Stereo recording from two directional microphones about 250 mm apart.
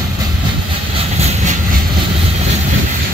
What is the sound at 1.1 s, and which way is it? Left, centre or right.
Train, right.